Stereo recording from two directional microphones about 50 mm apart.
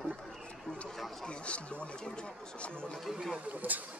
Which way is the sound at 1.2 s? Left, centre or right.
Left.